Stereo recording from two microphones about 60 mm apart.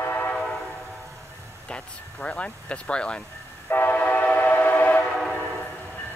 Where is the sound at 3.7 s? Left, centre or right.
Left.